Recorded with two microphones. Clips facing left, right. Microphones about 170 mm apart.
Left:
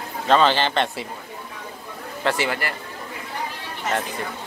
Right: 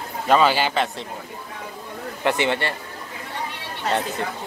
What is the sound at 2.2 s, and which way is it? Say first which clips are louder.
Speech: right 2 dB; 20° right (ahead or behind).